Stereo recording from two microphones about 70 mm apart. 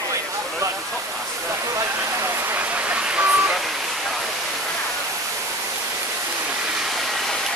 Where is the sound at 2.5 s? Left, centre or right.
Centre.